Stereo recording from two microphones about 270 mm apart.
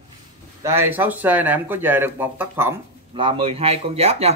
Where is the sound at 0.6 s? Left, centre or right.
Centre.